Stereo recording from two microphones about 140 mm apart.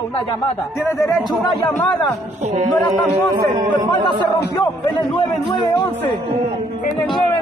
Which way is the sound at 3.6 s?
30° right (ahead or behind).